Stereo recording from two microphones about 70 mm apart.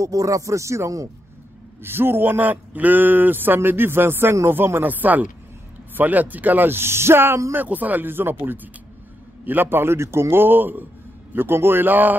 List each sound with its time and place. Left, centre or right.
0.0 s speech: right
1.8 s a man's voice: right
7.5 s a man's voice: right